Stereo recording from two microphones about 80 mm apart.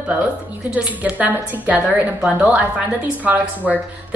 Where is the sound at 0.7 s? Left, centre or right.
Centre.